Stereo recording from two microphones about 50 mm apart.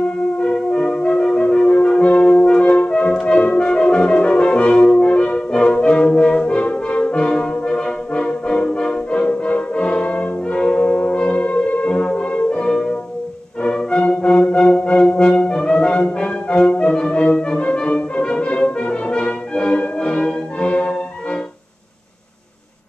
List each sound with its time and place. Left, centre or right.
0.4 s brass instrument: centre
13.6 s music: left